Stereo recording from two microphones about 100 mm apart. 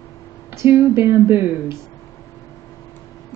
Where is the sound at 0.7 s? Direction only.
25° right (ahead or behind).